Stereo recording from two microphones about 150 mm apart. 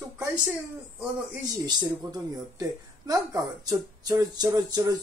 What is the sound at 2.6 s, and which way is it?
Speech, 25° right (ahead or behind).